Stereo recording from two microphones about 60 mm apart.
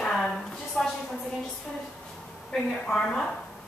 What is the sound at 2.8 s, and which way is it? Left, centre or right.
Speech, centre.